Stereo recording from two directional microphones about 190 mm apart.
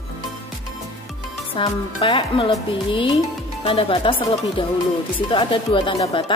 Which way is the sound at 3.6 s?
30° left (ahead or behind).